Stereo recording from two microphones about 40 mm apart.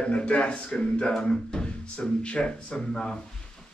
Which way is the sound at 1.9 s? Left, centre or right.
Left.